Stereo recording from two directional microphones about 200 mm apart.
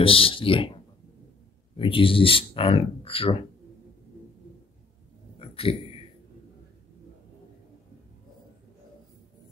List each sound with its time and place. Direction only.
0.0 s speech: 25° left (ahead or behind)
1.8 s speech: 25° left (ahead or behind)
5.4 s a sound: 30° left (ahead or behind)